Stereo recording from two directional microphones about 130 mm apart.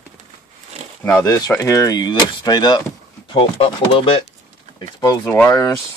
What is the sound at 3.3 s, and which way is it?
Speech, 45° left (ahead or behind).